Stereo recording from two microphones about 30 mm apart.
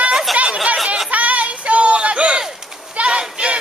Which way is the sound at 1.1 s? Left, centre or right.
Right.